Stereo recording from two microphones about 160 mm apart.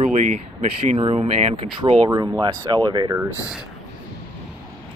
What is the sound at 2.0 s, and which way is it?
Speech, 20° right (ahead or behind).